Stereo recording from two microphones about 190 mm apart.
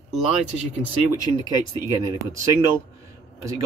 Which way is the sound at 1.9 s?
15° right (ahead or behind).